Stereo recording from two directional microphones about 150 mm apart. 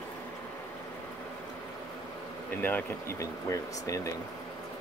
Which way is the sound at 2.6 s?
15° left (ahead or behind).